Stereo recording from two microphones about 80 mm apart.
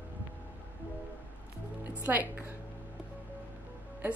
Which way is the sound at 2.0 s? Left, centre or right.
Right.